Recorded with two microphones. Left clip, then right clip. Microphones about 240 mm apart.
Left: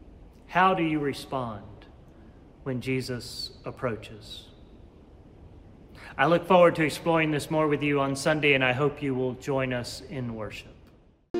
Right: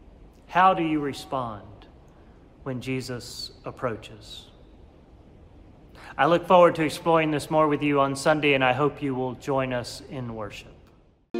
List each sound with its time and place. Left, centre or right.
0.5 s a man's voice: centre
2.6 s a man's voice: centre
5.9 s a man's voice: centre